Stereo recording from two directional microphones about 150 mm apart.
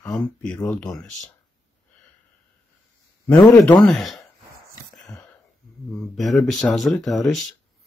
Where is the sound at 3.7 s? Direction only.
Centre (ahead or behind).